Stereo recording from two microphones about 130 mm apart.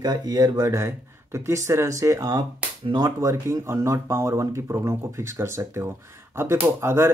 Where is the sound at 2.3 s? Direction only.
35° right (ahead or behind).